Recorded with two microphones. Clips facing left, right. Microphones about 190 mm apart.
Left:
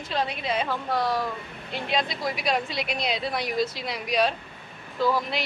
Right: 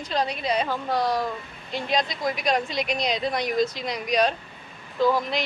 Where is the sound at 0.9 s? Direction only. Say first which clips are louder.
Right 2 dB; 20° right (ahead or behind).